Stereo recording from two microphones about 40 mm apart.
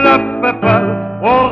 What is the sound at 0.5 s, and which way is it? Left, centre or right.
Music, left.